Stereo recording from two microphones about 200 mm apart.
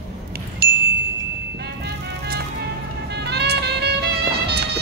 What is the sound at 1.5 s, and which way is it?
Music, 55° right (ahead or behind).